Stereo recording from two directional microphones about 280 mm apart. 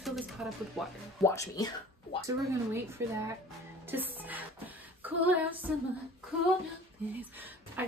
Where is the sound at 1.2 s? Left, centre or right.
Centre.